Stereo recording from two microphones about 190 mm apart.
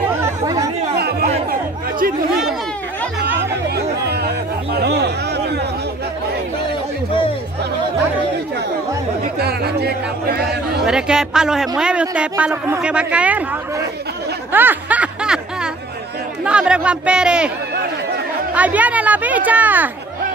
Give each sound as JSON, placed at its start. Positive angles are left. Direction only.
{"t": 0.2, "sound": "chatter", "side_deg": -20}
{"t": 0.9, "sound": "chatter", "side_deg": -55}
{"t": 3.7, "sound": "chatter", "side_deg": -60}
{"t": 4.7, "sound": "a sound", "side_deg": -60}
{"t": 9.4, "sound": "speech", "side_deg": -55}
{"t": 10.9, "sound": "speech", "side_deg": -5}
{"t": 14.5, "sound": "a sound", "side_deg": -10}
{"t": 16.4, "sound": "speech", "side_deg": -5}
{"t": 18.5, "sound": "speech", "side_deg": -10}